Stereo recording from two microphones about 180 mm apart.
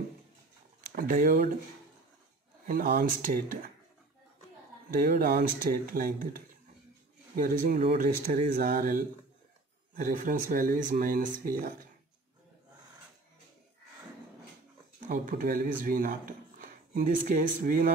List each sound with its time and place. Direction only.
0.7 s speech: 50° right (ahead or behind)
2.6 s speech: 55° right (ahead or behind)
4.9 s speech: 55° right (ahead or behind)
15.0 s speech: 50° right (ahead or behind)